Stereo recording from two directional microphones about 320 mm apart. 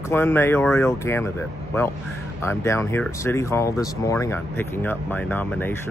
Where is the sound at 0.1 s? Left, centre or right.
Centre.